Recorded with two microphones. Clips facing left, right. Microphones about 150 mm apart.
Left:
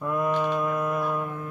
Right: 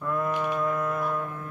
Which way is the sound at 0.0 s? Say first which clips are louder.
Left 3 dB; 15° left (ahead or behind).